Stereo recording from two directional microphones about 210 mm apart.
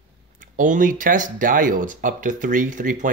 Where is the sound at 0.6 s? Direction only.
40° right (ahead or behind).